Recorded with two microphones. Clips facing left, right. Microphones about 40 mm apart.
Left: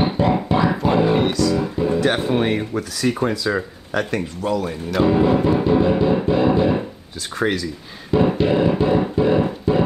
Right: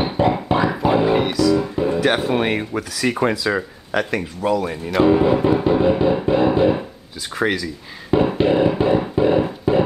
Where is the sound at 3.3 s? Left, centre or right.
Centre.